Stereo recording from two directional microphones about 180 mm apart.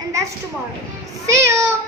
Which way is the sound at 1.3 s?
15° right (ahead or behind).